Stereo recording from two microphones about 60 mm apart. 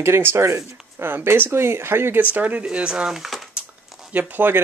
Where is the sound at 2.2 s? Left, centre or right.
Right.